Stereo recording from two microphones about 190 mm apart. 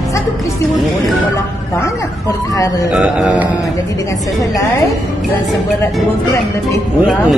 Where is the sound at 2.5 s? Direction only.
15° left (ahead or behind).